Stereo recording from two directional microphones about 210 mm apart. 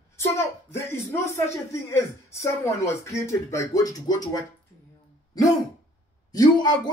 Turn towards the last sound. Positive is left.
turn(degrees=20)  # may be behind; listen again after turning